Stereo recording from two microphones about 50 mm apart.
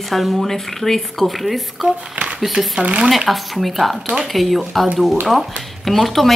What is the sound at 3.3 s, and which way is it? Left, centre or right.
Speech, centre.